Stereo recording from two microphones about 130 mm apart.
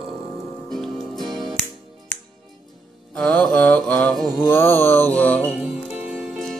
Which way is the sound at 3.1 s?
10° left (ahead or behind).